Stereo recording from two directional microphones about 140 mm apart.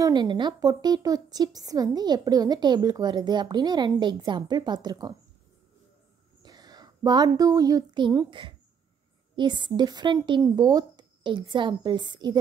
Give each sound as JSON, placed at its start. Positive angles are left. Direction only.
{"t": 0.0, "sound": "speech", "side_deg": -30}
{"t": 6.4, "sound": "a woman's voice", "side_deg": -30}